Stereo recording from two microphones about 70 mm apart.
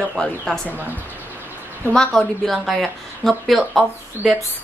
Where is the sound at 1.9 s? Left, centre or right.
Centre.